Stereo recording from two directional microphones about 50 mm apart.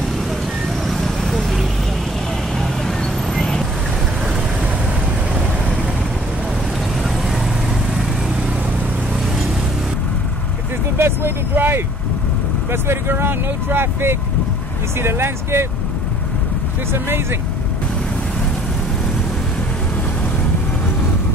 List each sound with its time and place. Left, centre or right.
0.8 s vehicle: centre
3.3 s vehicle: centre
11.0 s vehicle: right
12.8 s vehicle: right
15.0 s speech: right
16.9 s speech: right